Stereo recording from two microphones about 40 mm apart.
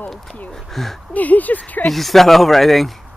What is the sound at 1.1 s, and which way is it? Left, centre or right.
Speech, left.